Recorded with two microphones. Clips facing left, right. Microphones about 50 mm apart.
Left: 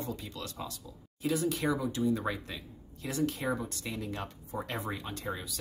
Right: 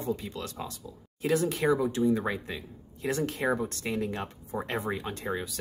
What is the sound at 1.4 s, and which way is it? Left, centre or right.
Speech, right.